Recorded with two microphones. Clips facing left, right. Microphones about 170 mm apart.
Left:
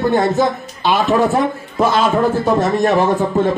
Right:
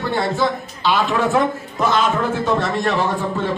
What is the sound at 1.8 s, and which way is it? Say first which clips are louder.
A man's voice: left 4 dB; 30° left (ahead or behind).